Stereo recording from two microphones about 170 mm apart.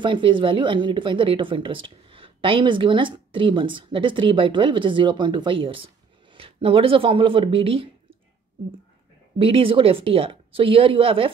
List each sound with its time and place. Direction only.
0.0 s a woman's voice: 30° right (ahead or behind)
9.4 s speech: 30° right (ahead or behind)